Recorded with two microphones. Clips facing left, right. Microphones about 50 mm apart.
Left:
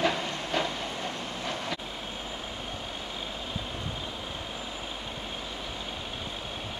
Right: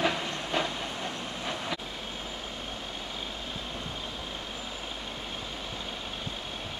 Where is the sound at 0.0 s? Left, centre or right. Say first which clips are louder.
Left 1 dB; centre.